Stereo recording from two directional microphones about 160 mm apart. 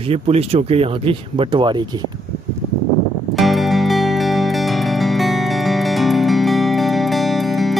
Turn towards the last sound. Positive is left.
turn(degrees=0)  # may be behind; listen again after turning